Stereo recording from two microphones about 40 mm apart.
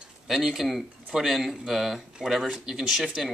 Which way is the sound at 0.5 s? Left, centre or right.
Centre.